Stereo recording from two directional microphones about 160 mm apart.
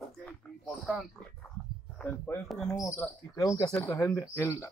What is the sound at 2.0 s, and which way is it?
Speech, 10° left (ahead or behind).